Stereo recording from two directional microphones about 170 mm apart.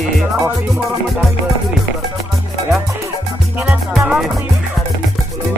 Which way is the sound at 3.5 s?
10° right (ahead or behind).